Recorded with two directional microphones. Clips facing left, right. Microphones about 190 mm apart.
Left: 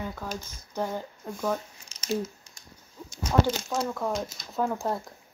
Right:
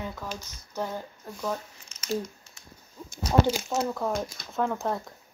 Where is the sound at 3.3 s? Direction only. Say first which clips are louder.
Right 1 dB; 10° right (ahead or behind).